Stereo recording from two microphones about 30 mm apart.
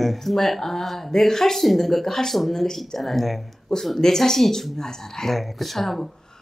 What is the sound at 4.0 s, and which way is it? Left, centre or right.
Speech, centre.